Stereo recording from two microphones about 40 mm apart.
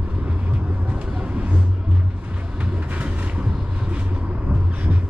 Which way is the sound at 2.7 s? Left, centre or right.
Right.